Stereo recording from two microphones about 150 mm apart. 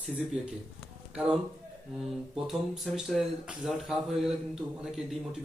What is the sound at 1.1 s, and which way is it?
Speech, 5° right (ahead or behind).